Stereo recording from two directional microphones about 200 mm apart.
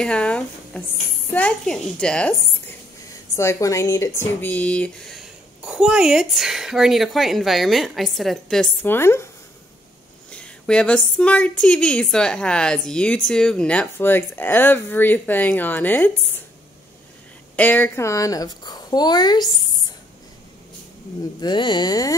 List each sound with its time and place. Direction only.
0.0 s speech: 5° left (ahead or behind)
10.3 s speech: 5° left (ahead or behind)
17.6 s a woman's voice: 10° left (ahead or behind)
21.4 s a woman's voice: 20° left (ahead or behind)